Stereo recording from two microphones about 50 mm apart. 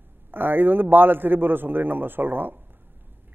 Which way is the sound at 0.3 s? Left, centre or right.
Right.